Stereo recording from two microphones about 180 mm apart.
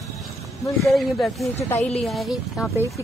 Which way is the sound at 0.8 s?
Centre (ahead or behind).